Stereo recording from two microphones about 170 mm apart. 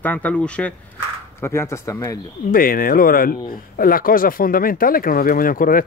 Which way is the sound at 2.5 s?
55° left (ahead or behind).